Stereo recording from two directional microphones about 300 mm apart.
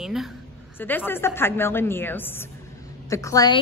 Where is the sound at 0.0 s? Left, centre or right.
Centre.